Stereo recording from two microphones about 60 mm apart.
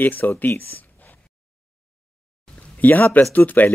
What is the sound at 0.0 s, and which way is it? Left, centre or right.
Speech, left.